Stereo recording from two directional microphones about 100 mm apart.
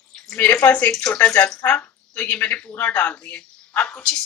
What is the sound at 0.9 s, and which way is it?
Speech, 10° left (ahead or behind).